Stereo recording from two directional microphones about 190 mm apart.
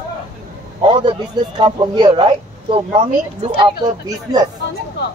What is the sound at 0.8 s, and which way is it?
A man's voice, 25° right (ahead or behind).